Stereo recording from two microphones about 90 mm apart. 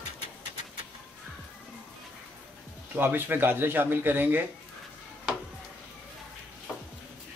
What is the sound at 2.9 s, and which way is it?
Speech, 25° right (ahead or behind).